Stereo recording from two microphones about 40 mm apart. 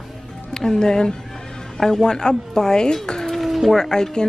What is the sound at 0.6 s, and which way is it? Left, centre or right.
Speech, centre.